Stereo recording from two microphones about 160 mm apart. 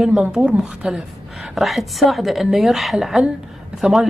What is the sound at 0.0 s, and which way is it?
A woman's voice, 5° right (ahead or behind).